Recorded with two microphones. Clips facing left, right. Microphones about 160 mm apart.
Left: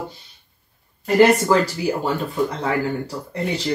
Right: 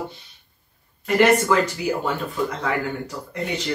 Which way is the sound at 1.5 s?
35° left (ahead or behind).